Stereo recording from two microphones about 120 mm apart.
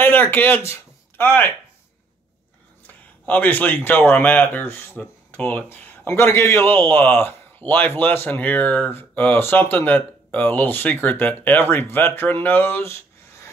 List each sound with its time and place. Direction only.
0.0 s speech: 15° left (ahead or behind)
2.9 s speech: 15° left (ahead or behind)